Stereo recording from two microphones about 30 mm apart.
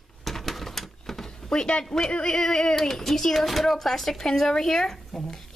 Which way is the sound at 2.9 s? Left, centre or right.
Centre.